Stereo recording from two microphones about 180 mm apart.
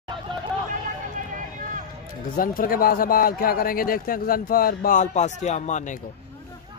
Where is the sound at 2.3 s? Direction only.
50° left (ahead or behind).